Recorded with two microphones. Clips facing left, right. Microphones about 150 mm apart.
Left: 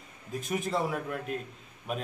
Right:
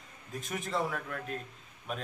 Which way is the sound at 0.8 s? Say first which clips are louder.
Left 4 dB; 20° left (ahead or behind).